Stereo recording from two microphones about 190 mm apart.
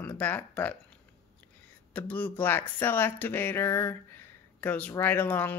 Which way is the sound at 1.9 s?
10° left (ahead or behind).